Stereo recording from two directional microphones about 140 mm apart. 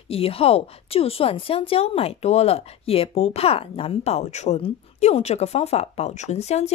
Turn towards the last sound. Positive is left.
turn(degrees=50)  # may be behind; listen again after turning